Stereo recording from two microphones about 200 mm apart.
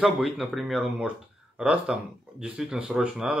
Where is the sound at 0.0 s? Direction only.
Centre (ahead or behind).